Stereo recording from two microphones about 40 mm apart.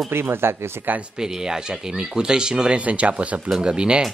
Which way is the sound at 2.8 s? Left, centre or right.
Right.